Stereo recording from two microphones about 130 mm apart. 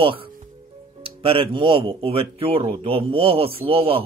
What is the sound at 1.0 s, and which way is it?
Speech, 45° right (ahead or behind).